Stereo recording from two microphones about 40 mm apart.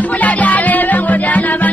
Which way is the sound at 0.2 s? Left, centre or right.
Left.